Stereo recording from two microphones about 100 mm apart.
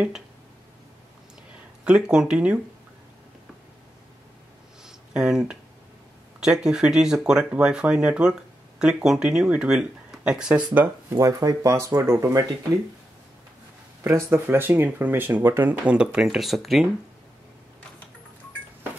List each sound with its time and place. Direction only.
1.9 s speech: 10° right (ahead or behind)
4.8 s a sound: 5° right (ahead or behind)
6.4 s speech: 10° right (ahead or behind)
11.1 s speech: 35° right (ahead or behind)
14.0 s speech: 25° right (ahead or behind)
15.8 s speech: 10° right (ahead or behind)